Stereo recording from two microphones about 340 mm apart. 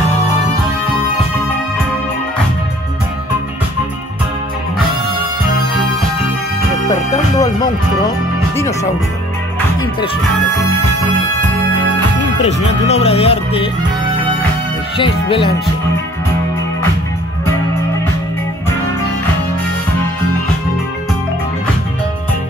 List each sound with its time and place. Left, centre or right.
6.9 s music: centre
12.4 s speech: centre
15.0 s speech: centre